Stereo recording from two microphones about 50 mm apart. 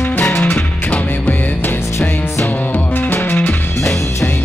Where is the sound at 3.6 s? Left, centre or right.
Left.